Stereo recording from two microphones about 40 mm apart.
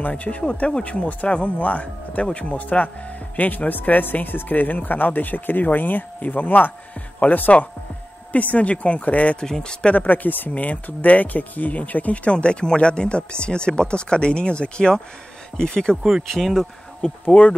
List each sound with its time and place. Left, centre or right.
0.0 s speech: left
9.4 s speech: left
10.0 s speech: left
12.3 s speech: left
16.0 s speech: centre
16.3 s speech: centre
17.3 s speech: left